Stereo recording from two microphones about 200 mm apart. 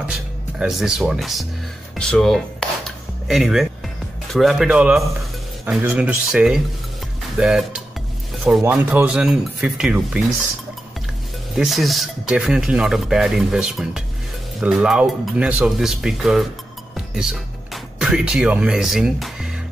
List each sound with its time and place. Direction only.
0.6 s speech: centre (ahead or behind)
2.0 s music: 5° left (ahead or behind)
4.3 s speech: centre (ahead or behind)
11.5 s speech: centre (ahead or behind)
16.9 s music: centre (ahead or behind)
17.9 s speech: 5° right (ahead or behind)